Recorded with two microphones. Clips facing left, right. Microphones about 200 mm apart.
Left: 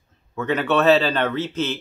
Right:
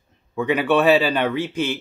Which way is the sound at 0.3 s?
10° right (ahead or behind).